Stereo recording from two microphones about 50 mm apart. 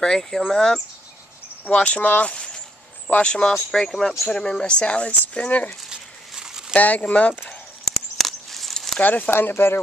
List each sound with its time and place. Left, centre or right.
0.0 s speech: centre
1.7 s speech: left
5.9 s a sound: centre
6.7 s speech: left
7.8 s a sound: centre
9.0 s speech: left
9.3 s speech: left